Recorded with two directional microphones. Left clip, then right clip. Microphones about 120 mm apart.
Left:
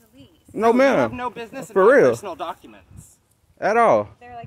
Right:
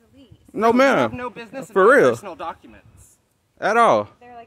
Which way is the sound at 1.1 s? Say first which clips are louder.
Left 2 dB; 15° left (ahead or behind).